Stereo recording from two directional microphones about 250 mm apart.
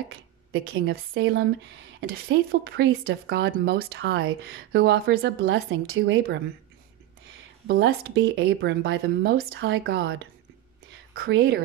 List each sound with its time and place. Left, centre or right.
0.5 s speech: right
7.6 s speech: right